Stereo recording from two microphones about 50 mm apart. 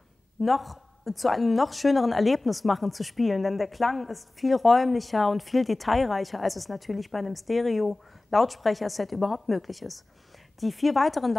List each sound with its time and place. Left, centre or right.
0.4 s a woman's voice: centre